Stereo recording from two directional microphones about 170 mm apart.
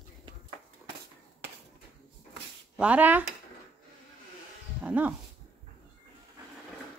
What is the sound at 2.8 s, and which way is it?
Speech, 10° right (ahead or behind).